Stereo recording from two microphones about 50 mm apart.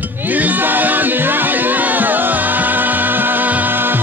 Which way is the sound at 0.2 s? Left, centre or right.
Right.